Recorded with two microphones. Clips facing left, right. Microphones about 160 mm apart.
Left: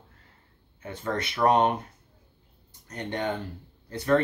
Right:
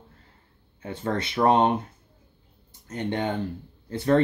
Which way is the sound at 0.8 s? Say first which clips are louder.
Right 3 dB; 25° right (ahead or behind).